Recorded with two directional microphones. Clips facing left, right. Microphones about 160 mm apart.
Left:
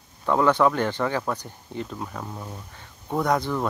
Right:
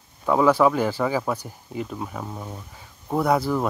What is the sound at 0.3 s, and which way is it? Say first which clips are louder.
Speech: right 2 dB; 5° right (ahead or behind).